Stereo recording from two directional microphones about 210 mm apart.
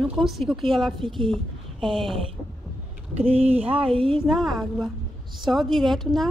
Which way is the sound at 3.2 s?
30° right (ahead or behind).